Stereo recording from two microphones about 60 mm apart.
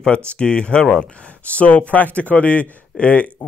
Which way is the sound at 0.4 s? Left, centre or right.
Centre.